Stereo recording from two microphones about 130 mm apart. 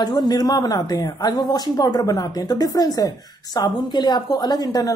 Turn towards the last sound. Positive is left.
turn(degrees=30)  # may be behind; listen again after turning